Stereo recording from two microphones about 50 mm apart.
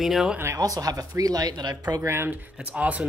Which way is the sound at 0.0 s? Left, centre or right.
Centre.